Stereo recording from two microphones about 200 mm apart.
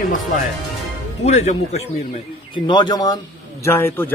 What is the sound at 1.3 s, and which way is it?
Speech, 35° left (ahead or behind).